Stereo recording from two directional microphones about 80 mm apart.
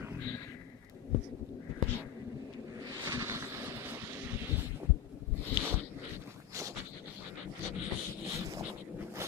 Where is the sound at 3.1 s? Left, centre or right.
Right.